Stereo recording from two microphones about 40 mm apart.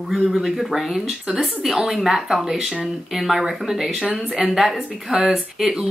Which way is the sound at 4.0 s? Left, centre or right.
Right.